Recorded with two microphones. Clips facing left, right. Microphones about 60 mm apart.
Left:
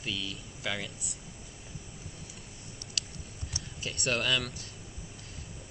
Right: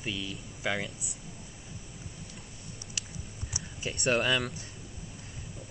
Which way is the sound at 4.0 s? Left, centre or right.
Right.